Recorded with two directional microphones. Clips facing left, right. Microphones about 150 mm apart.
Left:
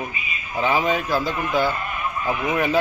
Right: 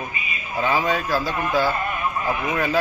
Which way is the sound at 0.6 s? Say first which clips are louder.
Left 1 dB; 20° left (ahead or behind).